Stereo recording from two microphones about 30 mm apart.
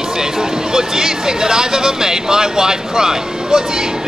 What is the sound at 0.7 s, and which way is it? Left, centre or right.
Speech, centre.